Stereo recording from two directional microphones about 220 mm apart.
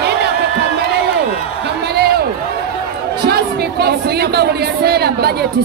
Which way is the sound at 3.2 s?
45° right (ahead or behind).